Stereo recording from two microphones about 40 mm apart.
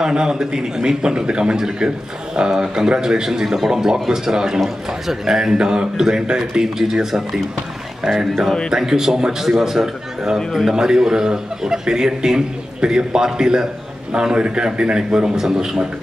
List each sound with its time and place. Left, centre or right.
0.0 s a man's voice: centre
5.5 s a man's voice: centre
8.3 s speech: centre
8.6 s a man's voice: centre